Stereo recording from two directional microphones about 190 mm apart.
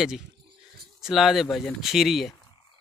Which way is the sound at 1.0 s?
Centre (ahead or behind).